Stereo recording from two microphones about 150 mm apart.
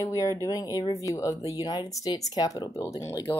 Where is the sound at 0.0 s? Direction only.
20° left (ahead or behind).